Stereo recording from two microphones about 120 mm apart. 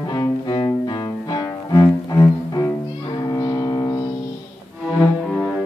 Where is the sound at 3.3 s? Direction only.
30° left (ahead or behind).